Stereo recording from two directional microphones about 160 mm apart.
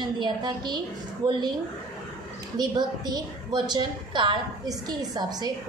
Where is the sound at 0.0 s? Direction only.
25° right (ahead or behind).